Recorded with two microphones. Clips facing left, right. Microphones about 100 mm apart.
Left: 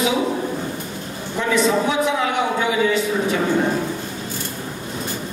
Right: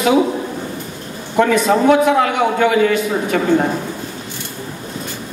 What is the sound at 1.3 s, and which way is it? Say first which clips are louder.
A man's voice: right 5 dB; 55° right (ahead or behind).